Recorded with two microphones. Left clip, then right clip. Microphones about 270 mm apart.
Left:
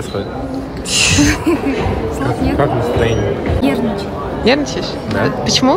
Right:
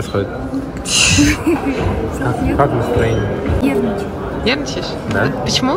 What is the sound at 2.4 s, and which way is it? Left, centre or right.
Speech, centre.